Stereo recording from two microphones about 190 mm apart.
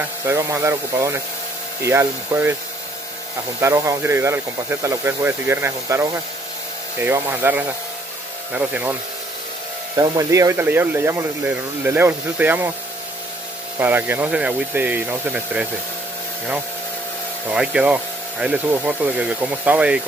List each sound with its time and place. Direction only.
0.3 s speech: 15° right (ahead or behind)
3.6 s speech: 15° right (ahead or behind)
9.9 s speech: 15° right (ahead or behind)
13.7 s speech: 10° right (ahead or behind)
17.5 s speech: 5° right (ahead or behind)